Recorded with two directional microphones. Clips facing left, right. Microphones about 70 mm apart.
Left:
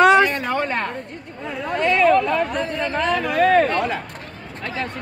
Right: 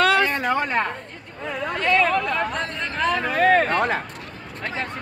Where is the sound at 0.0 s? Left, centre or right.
Centre.